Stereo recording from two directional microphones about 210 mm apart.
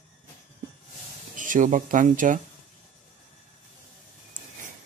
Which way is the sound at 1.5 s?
40° right (ahead or behind).